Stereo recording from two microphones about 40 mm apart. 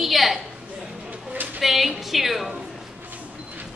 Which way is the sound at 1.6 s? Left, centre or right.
Centre.